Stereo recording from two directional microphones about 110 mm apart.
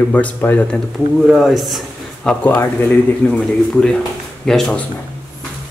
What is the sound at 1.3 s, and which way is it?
Speech, centre (ahead or behind).